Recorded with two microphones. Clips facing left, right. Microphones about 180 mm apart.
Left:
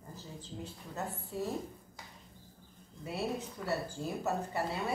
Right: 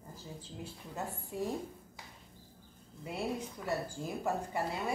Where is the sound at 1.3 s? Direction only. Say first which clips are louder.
Right 1 dB; 15° right (ahead or behind).